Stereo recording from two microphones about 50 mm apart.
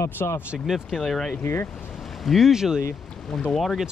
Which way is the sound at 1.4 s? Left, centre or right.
Left.